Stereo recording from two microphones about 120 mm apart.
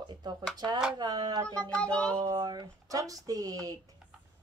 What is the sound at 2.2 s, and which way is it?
Speech, 30° right (ahead or behind).